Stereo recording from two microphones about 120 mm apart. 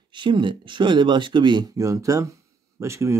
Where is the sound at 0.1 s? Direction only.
40° right (ahead or behind).